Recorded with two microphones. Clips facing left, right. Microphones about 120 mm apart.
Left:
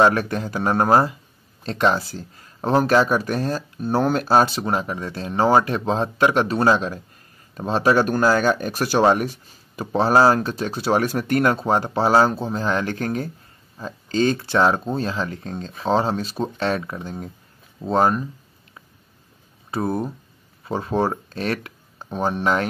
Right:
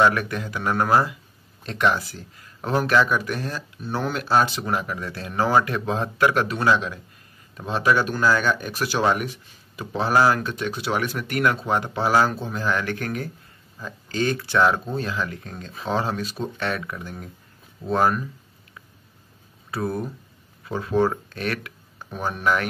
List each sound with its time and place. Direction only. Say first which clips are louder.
0.0 s speech: left 3 dB; 35° left (ahead or behind)
19.7 s speech: left 3 dB; 25° left (ahead or behind)